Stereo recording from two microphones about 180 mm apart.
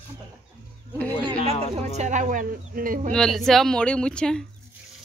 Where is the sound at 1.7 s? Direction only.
40° right (ahead or behind).